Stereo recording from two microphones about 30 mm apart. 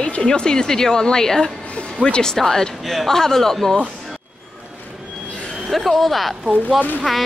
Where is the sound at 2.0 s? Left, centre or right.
Right.